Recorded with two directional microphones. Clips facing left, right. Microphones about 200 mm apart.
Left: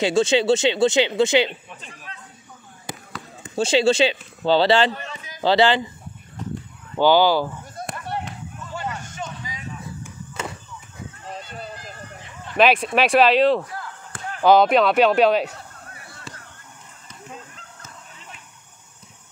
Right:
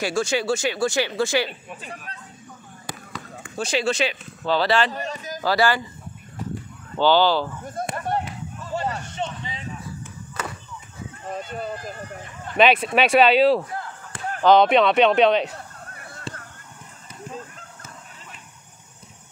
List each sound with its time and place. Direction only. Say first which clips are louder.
0.0 s speech: left 5 dB; 20° left (ahead or behind)
2.1 s speech: right 1 dB; 40° right (ahead or behind)
3.4 s speech: left 6 dB; 25° left (ahead or behind)
4.9 s a man's voice: right 6 dB; 40° right (ahead or behind)
5.4 s speech: left 4 dB; 25° left (ahead or behind)
7.0 s speech: left 2 dB; 10° left (ahead or behind)
7.9 s run: right 4 dB; 45° right (ahead or behind)
8.7 s a sound: right 4 dB; 35° right (ahead or behind)
11.2 s a sound: right 6 dB; 50° right (ahead or behind)
12.5 s speech: even; centre (ahead or behind)
16.3 s a sound: right 6 dB; 30° right (ahead or behind)